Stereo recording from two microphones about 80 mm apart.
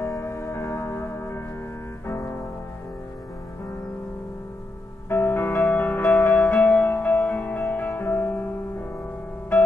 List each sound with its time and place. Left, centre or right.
0.0 s music: left
5.1 s music: left